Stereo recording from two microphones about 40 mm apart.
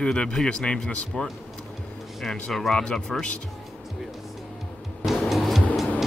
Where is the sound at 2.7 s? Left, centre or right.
Centre.